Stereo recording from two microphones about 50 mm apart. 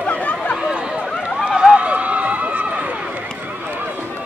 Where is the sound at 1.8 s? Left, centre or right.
Right.